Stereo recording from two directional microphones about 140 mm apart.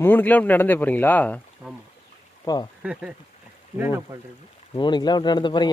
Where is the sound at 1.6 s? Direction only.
5° right (ahead or behind).